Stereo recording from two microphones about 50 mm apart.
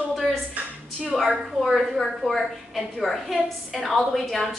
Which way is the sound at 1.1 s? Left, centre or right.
Centre.